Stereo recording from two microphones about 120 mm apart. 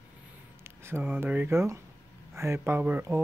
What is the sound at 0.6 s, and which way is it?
Speech, 20° right (ahead or behind).